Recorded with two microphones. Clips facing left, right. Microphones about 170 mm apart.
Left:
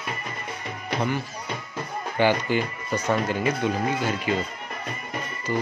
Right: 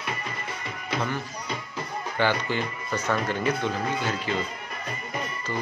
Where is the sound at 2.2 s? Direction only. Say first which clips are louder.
Left 4 dB; 15° left (ahead or behind).